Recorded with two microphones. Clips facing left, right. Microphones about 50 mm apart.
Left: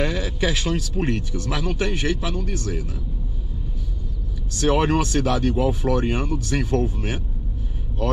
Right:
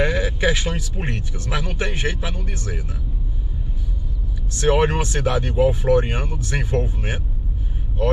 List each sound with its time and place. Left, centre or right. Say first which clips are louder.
0.0 s speech: right 3 dB; right
4.6 s speech: right 1 dB; centre